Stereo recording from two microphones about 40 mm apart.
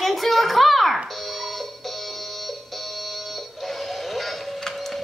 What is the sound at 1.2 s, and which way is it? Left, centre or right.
Music, centre.